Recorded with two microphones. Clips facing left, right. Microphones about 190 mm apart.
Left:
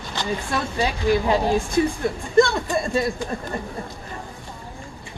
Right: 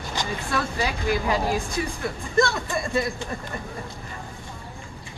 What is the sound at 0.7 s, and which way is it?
Speech, 25° left (ahead or behind).